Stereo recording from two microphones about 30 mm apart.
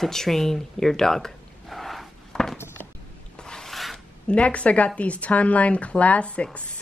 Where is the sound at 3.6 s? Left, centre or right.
Centre.